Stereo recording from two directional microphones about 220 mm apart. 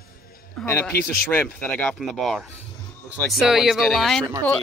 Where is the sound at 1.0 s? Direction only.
45° left (ahead or behind).